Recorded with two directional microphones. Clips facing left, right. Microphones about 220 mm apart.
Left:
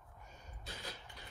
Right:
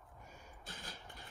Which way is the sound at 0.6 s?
50° right (ahead or behind).